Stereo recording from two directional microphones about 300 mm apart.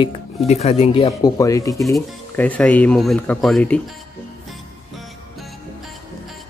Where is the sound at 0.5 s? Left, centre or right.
Left; by 3.8 s centre.